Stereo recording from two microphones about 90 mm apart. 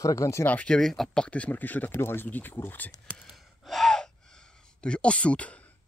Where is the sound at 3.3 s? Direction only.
Centre (ahead or behind).